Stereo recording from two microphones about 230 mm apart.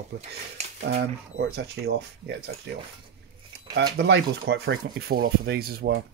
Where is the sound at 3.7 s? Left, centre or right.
Right.